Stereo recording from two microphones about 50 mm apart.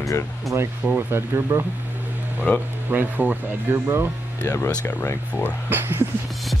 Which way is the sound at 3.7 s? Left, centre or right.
Right.